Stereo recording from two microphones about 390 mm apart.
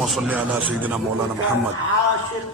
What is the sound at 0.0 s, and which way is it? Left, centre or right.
Speech, centre.